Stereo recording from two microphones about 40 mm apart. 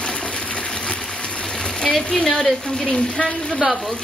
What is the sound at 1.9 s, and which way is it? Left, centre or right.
A woman's voice, centre.